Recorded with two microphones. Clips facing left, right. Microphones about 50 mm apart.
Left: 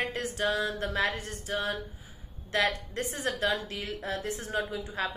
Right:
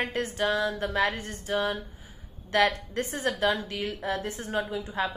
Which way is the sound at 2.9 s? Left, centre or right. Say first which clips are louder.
Right 3 dB; right.